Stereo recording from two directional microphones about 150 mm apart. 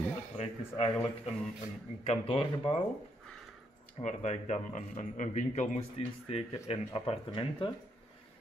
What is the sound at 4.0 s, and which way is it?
Speech, 50° left (ahead or behind).